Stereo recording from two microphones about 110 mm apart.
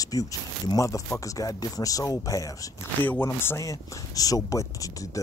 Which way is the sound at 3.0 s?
20° left (ahead or behind).